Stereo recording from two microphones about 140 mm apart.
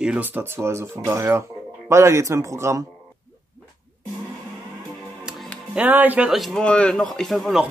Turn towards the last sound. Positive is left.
turn(degrees=0)  # may be behind; listen again after turning